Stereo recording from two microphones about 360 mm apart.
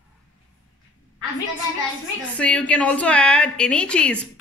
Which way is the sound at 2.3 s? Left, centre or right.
Centre.